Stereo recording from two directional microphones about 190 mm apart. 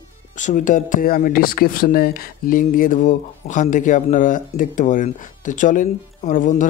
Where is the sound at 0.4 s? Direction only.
40° left (ahead or behind).